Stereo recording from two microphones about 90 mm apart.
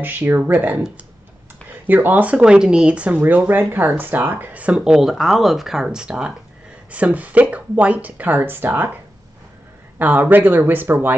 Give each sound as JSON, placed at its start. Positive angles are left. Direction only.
{"t": 0.0, "sound": "speech", "side_deg": -20}
{"t": 9.9, "sound": "speech", "side_deg": -15}